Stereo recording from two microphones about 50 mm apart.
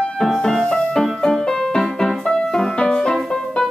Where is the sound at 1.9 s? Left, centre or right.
Centre.